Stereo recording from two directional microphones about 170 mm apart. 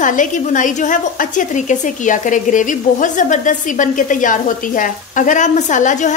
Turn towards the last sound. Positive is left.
turn(degrees=45)  # may be behind; listen again after turning